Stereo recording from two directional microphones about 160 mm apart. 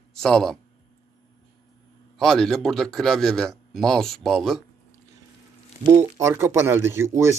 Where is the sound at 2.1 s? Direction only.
5° left (ahead or behind).